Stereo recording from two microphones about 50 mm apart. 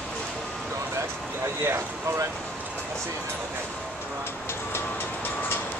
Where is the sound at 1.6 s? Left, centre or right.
Right.